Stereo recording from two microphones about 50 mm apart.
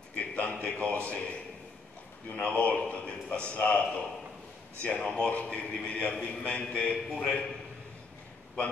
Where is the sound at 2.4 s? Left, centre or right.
Left.